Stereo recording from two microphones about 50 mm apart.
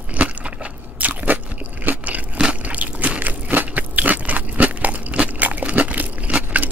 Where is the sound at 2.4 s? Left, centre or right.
Right.